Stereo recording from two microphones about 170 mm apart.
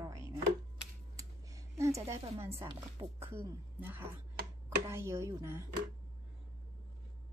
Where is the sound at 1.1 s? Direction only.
20° right (ahead or behind).